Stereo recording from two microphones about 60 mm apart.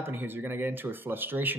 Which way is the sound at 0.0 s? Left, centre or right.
Right.